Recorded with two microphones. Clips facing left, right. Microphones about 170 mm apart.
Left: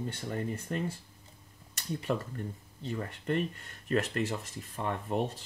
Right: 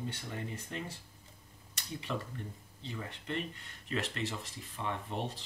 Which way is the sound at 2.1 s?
50° left (ahead or behind).